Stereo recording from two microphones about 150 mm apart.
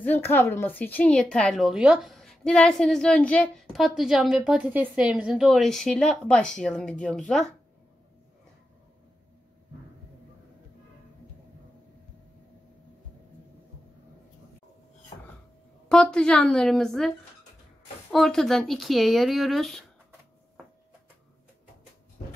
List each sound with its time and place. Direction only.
0.0 s a woman's voice: 15° left (ahead or behind)
15.9 s a woman's voice: 5° left (ahead or behind)
18.1 s a woman's voice: 5° left (ahead or behind)